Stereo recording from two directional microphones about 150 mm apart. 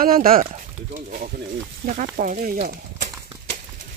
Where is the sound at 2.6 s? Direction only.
80° right.